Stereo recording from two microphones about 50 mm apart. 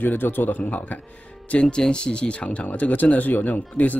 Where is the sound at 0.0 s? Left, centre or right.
Left.